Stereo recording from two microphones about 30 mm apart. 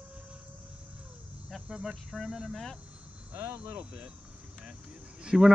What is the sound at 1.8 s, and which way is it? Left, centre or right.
Speech, centre.